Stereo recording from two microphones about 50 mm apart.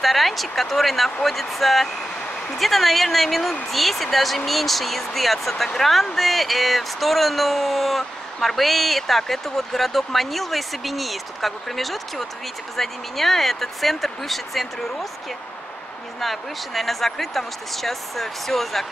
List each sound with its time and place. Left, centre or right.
0.0 s speech: centre
16.2 s speech: centre